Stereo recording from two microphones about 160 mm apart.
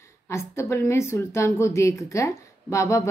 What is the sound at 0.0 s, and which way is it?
A woman's voice, 15° left (ahead or behind).